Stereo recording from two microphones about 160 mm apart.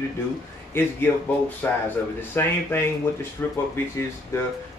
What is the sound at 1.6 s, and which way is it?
Speech, 10° left (ahead or behind).